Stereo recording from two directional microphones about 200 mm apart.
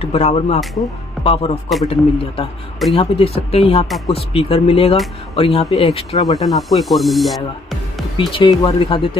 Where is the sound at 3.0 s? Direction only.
30° left (ahead or behind).